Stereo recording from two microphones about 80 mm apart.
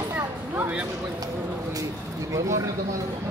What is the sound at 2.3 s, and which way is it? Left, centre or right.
Speech, right.